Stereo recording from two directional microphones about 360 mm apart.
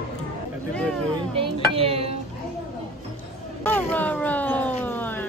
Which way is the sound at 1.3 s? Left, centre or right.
Centre.